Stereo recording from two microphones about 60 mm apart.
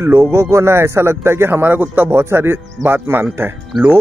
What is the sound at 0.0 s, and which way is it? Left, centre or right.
Speech, right.